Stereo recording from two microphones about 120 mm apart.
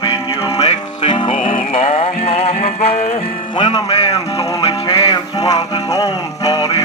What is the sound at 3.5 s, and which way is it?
Speech, 45° left (ahead or behind).